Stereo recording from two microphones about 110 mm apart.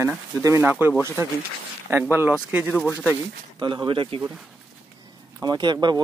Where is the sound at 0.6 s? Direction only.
15° right (ahead or behind).